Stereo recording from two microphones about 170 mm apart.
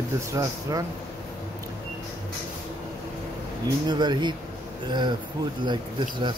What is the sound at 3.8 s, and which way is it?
Speech, 25° right (ahead or behind).